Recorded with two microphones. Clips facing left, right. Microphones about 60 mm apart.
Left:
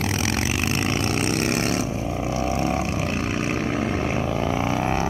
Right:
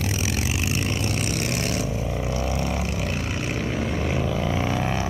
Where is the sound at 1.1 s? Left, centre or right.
Left.